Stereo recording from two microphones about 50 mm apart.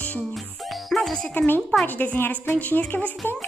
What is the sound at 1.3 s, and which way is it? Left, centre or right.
A woman's voice, left.